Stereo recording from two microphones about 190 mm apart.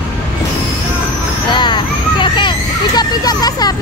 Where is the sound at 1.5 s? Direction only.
25° left (ahead or behind).